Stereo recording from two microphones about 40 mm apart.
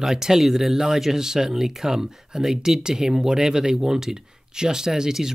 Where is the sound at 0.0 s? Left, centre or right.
Centre.